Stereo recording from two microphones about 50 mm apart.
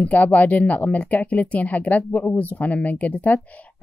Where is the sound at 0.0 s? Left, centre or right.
Left.